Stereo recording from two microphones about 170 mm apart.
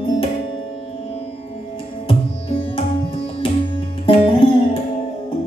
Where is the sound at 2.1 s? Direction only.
35° left (ahead or behind).